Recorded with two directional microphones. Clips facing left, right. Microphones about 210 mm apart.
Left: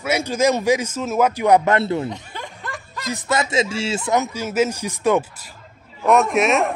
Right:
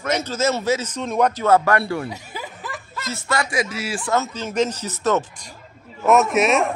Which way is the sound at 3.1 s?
20° left (ahead or behind).